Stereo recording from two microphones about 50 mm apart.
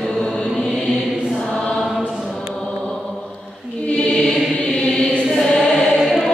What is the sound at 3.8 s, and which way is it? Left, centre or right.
Choir, left.